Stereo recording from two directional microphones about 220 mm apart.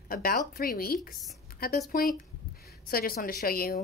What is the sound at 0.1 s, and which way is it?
A woman's voice, 40° left (ahead or behind).